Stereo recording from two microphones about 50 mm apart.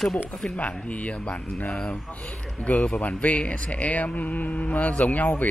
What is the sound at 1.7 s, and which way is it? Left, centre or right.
Speech, centre.